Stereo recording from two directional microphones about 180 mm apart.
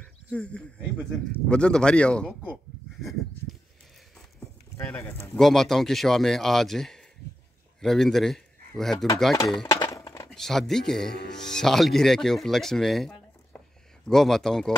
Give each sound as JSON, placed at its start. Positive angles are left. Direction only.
{"t": 0.3, "sound": "speech", "side_deg": 5}
{"t": 4.7, "sound": "speech", "side_deg": 15}
{"t": 5.4, "sound": "speech", "side_deg": 0}
{"t": 9.7, "sound": "chink", "side_deg": 20}
{"t": 10.3, "sound": "speech", "side_deg": 0}